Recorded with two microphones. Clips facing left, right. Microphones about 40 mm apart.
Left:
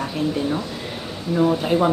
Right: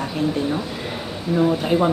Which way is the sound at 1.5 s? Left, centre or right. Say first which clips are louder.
Even; centre.